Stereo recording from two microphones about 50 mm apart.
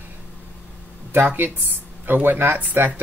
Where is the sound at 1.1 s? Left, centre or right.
Right.